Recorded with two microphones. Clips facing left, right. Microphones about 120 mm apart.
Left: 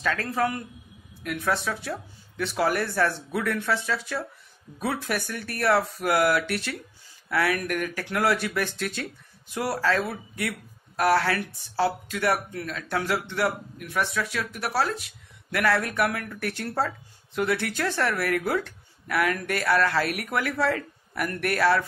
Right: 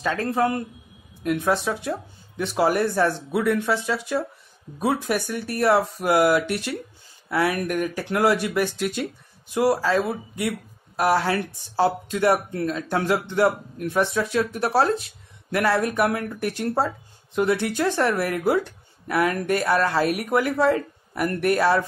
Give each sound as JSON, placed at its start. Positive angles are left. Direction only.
{"t": 0.0, "sound": "speech", "side_deg": -25}